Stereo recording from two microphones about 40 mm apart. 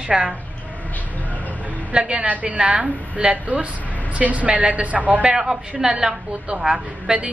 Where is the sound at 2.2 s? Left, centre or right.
Right.